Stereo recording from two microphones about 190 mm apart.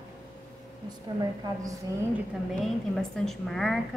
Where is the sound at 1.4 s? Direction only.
20° right (ahead or behind).